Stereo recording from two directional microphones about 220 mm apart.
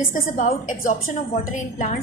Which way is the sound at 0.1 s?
35° left (ahead or behind).